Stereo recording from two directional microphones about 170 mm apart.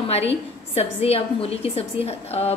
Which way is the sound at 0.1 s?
35° left (ahead or behind).